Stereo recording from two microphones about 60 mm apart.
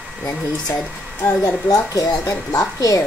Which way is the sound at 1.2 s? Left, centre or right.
Left.